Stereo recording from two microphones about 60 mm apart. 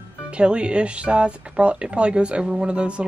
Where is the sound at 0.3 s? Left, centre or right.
Centre.